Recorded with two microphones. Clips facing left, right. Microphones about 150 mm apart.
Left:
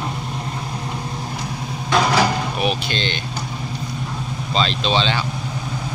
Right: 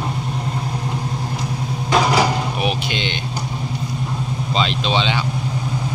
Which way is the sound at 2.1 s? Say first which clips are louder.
Right 1 dB; 15° right (ahead or behind).